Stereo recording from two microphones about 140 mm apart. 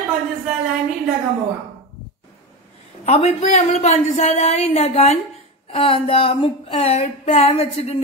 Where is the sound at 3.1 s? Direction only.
50° left (ahead or behind).